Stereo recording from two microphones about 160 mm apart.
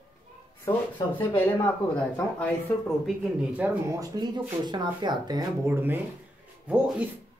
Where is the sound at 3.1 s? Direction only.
10° right (ahead or behind).